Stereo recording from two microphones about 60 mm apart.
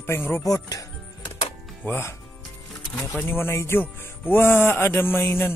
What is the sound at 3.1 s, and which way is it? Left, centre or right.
Speech, left.